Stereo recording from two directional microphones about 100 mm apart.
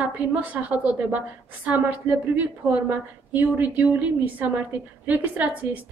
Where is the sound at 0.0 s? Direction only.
15° right (ahead or behind).